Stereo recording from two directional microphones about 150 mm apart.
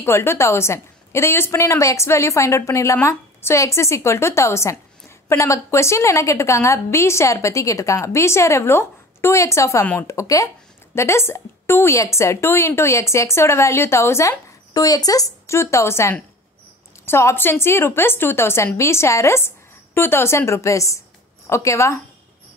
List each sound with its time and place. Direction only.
0.0 s a woman's voice: 15° left (ahead or behind)